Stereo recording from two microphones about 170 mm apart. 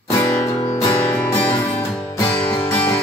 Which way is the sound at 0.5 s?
40° left (ahead or behind).